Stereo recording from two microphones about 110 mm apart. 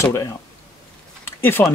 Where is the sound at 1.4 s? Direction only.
20° left (ahead or behind).